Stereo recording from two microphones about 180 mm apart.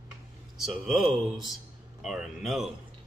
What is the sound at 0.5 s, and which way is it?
Speech, centre (ahead or behind).